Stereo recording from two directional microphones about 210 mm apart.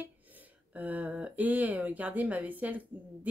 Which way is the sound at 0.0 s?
10° right (ahead or behind).